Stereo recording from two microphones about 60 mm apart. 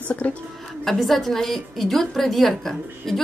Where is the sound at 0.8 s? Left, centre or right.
Centre.